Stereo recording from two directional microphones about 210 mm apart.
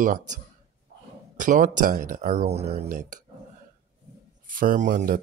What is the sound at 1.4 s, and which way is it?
Speech, 40° right (ahead or behind).